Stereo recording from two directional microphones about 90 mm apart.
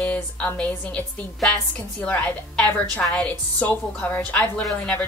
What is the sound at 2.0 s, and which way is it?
A woman's voice, 15° left (ahead or behind).